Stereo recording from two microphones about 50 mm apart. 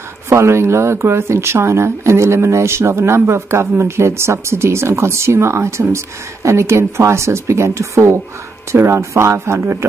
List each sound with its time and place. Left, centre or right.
0.3 s speech: right
8.7 s speech: right